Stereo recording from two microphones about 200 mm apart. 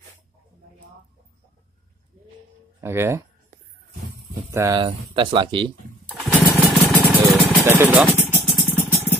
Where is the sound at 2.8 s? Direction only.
10° right (ahead or behind).